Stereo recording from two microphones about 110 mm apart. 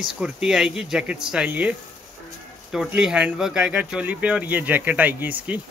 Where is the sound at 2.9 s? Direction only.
10° right (ahead or behind).